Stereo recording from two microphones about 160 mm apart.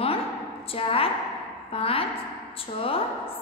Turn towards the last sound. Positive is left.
turn(degrees=35)  # may be behind; listen again after turning